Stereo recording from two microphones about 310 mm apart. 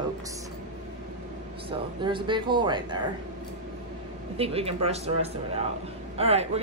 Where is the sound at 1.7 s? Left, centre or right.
Centre.